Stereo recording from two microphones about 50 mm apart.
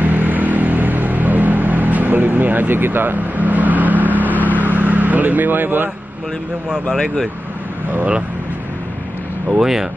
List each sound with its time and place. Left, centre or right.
0.0 s vehicle: right
6.7 s speech: centre
9.6 s speech: centre